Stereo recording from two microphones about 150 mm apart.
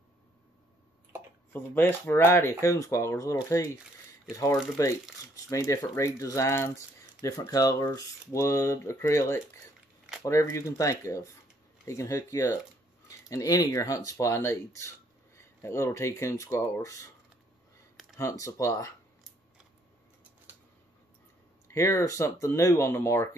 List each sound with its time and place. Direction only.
1.5 s speech: 15° left (ahead or behind)
18.1 s speech: 20° left (ahead or behind)
21.7 s speech: 20° left (ahead or behind)